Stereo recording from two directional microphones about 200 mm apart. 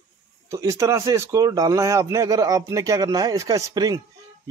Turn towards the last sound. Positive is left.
turn(degrees=-15)  # may be behind; listen again after turning